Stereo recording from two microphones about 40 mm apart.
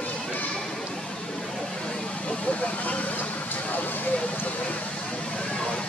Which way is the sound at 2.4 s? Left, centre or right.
Left.